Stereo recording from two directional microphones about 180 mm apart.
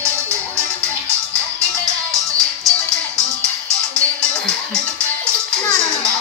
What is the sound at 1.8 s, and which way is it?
Music, 20° right (ahead or behind).